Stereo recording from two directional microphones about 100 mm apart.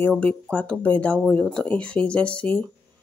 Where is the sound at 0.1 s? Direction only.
10° left (ahead or behind).